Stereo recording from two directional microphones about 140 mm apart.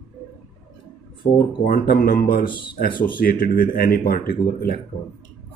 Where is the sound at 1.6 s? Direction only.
90° left.